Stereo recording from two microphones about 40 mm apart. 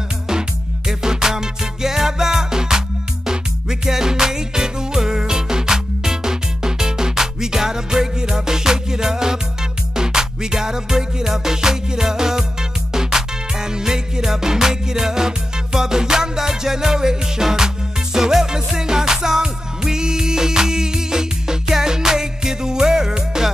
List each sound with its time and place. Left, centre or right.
0.3 s music: centre